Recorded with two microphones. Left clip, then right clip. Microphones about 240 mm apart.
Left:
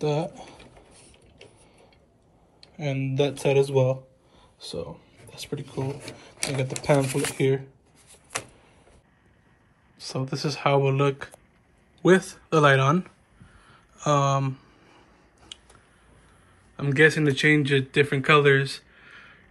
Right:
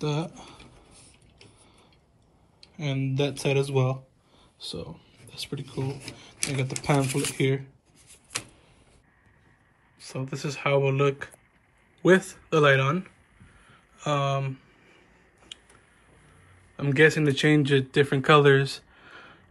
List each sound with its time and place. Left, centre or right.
0.0 s speech: right
2.8 s speech: right
3.6 s speech: centre
4.4 s a sound: right
5.8 s speech: centre
9.9 s speech: centre
13.7 s a sound: centre
16.7 s speech: centre